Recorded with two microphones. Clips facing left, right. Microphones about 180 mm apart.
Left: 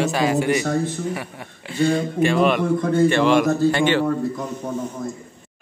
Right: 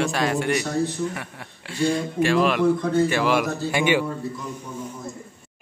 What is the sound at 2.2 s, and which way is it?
A man's voice, centre (ahead or behind).